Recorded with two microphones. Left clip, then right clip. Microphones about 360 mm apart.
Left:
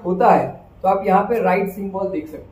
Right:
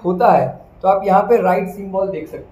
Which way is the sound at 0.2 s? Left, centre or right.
Right.